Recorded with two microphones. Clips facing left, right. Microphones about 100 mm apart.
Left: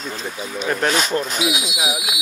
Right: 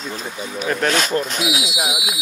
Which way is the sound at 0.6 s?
Centre (ahead or behind).